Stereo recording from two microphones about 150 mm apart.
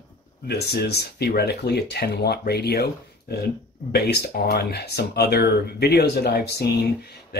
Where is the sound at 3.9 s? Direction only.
90° left.